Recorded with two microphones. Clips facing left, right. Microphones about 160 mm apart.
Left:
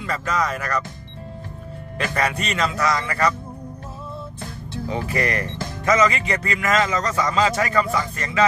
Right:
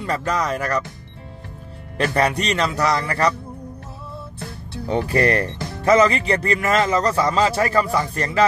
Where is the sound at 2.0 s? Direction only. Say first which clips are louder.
Right 4 dB; 35° right (ahead or behind).